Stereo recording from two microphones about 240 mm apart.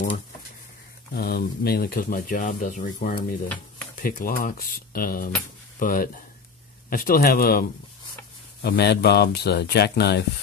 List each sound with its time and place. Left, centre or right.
1.1 s speech: left
8.6 s speech: left